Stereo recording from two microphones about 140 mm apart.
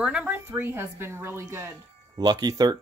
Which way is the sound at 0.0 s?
10° right (ahead or behind).